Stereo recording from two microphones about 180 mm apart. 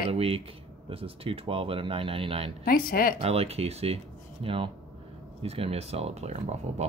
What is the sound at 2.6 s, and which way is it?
Speech, 55° left (ahead or behind).